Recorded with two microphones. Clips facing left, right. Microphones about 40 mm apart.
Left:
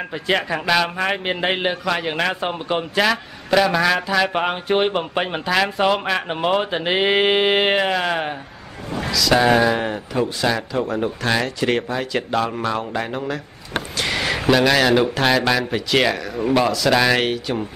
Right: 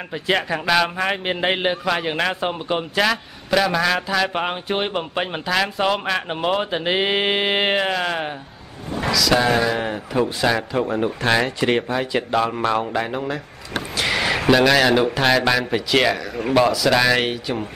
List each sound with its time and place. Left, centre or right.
0.1 s a man's voice: centre
9.8 s a man's voice: centre
13.9 s a sound: centre
14.5 s a man's voice: centre